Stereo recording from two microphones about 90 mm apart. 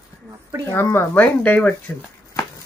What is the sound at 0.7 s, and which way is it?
Speech, 30° left (ahead or behind).